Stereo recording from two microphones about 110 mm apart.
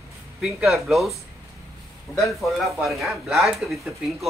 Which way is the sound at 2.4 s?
Centre (ahead or behind).